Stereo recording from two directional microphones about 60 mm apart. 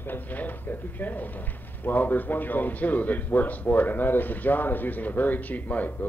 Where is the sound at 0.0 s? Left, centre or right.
Left.